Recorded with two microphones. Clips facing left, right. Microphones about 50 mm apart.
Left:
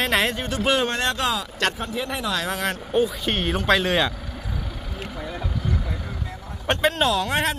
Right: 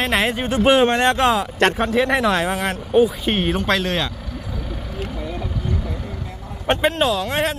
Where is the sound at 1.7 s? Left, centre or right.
Right.